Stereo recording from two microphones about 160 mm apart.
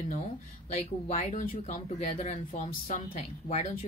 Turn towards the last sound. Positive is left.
turn(degrees=45)  # may be behind; listen again after turning